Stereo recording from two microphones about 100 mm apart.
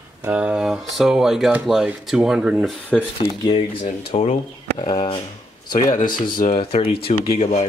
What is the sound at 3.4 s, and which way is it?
Speech, 65° left (ahead or behind).